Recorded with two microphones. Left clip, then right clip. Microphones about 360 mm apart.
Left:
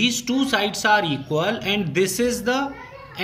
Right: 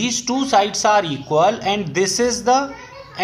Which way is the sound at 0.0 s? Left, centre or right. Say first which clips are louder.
Right 1 dB; centre.